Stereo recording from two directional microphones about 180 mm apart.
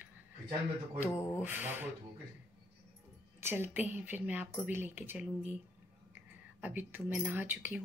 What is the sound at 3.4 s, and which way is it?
Speech, 10° right (ahead or behind).